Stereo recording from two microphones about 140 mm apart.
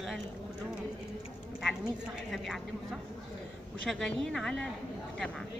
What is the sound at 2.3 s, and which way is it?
Speech, centre (ahead or behind).